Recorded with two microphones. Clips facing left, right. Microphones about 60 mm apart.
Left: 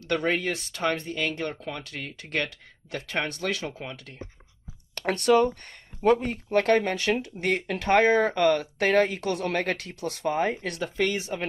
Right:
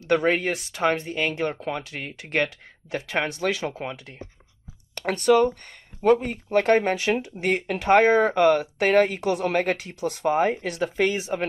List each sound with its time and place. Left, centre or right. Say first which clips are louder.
0.0 s speech: right 4 dB; centre
5.0 s speech: right 2 dB; centre
6.7 s speech: right 3 dB; right